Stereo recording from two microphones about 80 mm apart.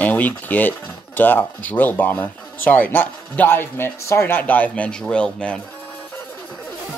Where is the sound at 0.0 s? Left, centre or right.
Left.